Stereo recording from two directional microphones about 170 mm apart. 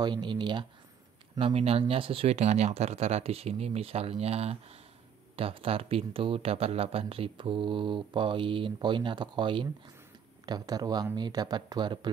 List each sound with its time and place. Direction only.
0.0 s speech: 25° right (ahead or behind)